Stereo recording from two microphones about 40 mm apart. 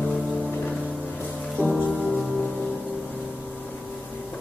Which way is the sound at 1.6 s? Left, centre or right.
Left.